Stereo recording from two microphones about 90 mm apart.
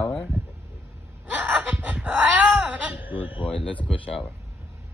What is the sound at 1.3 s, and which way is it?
Wail, 20° right (ahead or behind).